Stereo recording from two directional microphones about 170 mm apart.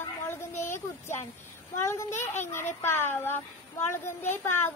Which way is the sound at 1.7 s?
15° left (ahead or behind).